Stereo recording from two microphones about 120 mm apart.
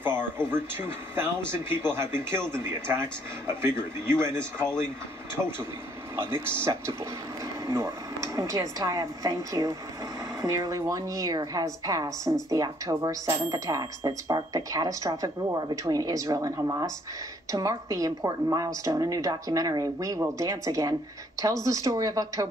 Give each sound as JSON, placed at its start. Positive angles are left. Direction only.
{"t": 0.0, "sound": "speech", "side_deg": -20}
{"t": 6.1, "sound": "speech", "side_deg": -20}